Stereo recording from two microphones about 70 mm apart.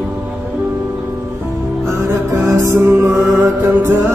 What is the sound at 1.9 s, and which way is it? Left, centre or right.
Music, right.